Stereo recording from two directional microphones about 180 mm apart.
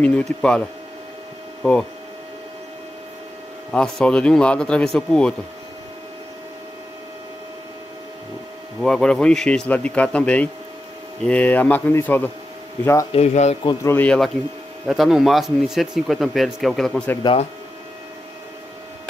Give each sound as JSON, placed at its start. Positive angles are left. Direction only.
{"t": 0.0, "sound": "speech", "side_deg": 5}
{"t": 3.7, "sound": "speech", "side_deg": 5}
{"t": 8.8, "sound": "speech", "side_deg": 5}
{"t": 13.1, "sound": "speech", "side_deg": 40}
{"t": 13.7, "sound": "speech", "side_deg": 15}
{"t": 17.2, "sound": "speech", "side_deg": 30}